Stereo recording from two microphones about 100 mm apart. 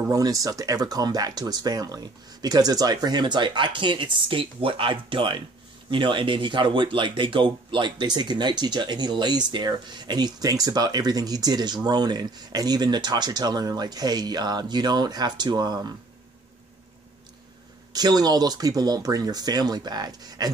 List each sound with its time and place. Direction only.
0.1 s speech: 35° right (ahead or behind)
17.9 s speech: 40° right (ahead or behind)